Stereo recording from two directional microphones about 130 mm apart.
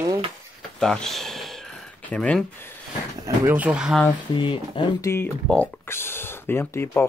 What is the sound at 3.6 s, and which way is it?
Speech, 10° right (ahead or behind).